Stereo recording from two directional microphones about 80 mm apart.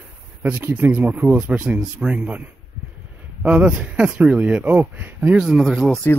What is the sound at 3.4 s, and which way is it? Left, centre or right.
Speech, centre.